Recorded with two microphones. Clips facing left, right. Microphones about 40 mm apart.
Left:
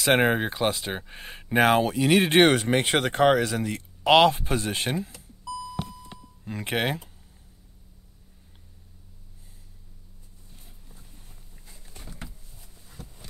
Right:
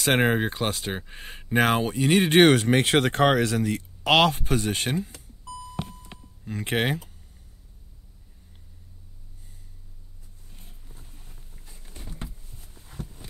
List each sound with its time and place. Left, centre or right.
0.0 s speech: centre
6.6 s speech: centre
11.6 s a sound: right